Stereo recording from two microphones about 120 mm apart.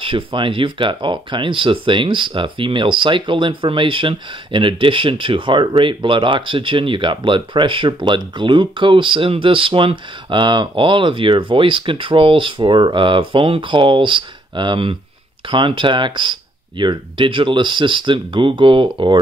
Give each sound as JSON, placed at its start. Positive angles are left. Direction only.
{"t": 0.0, "sound": "speech", "side_deg": -45}